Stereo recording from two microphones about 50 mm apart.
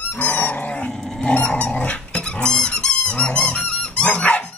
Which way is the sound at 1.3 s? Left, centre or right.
Left.